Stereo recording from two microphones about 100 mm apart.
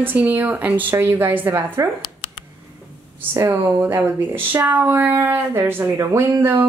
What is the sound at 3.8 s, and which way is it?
Speech, 20° right (ahead or behind).